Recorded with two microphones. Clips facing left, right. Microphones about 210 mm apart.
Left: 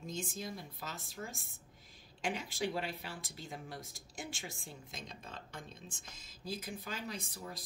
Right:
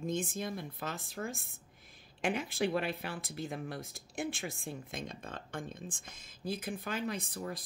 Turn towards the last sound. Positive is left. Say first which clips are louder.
# right 6 dB
turn(degrees=-55)  # may be behind; listen again after turning